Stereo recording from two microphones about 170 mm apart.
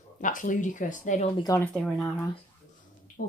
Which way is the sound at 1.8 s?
5° left (ahead or behind).